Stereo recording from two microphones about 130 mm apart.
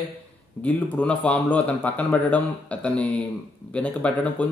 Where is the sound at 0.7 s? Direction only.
10° left (ahead or behind).